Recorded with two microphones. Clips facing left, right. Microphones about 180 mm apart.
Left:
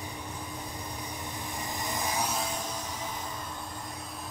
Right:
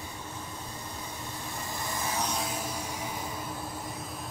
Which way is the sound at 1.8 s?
15° left (ahead or behind).